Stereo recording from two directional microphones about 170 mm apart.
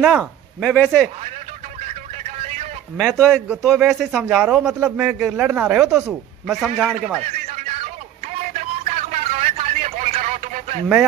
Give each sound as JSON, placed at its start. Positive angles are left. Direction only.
{"t": 0.0, "sound": "speech", "side_deg": 0}
{"t": 3.0, "sound": "a man's voice", "side_deg": 0}
{"t": 7.2, "sound": "music", "side_deg": -40}
{"t": 8.5, "sound": "a sound", "side_deg": -40}